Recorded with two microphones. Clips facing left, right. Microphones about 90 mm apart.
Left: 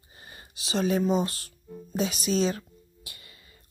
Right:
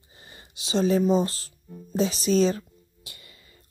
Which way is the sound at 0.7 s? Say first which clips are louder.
Right 3 dB; 30° right (ahead or behind).